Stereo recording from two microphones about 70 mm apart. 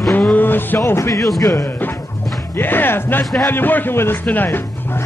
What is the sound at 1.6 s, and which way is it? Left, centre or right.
Music, left.